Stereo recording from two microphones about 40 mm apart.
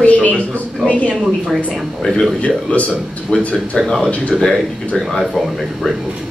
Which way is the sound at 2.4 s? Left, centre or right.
Left.